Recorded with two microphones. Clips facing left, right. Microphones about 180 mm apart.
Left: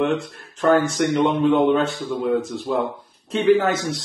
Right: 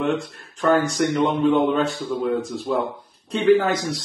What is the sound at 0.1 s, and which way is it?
Speech, centre (ahead or behind).